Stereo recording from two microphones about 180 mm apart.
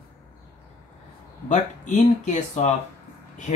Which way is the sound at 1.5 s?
40° left (ahead or behind).